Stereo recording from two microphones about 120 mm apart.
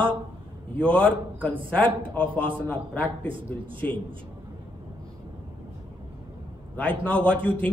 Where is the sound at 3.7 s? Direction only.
45° right (ahead or behind).